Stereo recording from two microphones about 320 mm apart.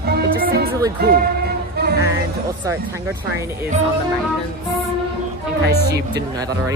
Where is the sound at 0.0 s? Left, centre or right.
Right.